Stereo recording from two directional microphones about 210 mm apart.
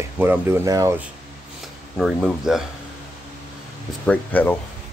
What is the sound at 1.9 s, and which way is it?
Speech, centre (ahead or behind).